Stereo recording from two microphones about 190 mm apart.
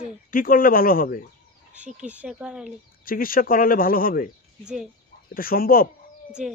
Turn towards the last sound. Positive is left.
turn(degrees=50)  # may be behind; listen again after turning